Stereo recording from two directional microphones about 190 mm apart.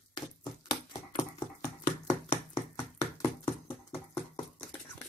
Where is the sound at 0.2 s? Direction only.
20° left (ahead or behind).